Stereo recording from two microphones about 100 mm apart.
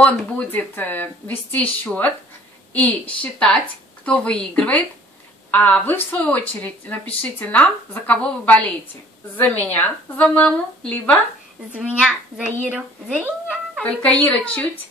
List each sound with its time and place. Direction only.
0.0 s speech: 15° left (ahead or behind)
11.7 s a child's voice: 10° right (ahead or behind)
14.2 s speech: 15° left (ahead or behind)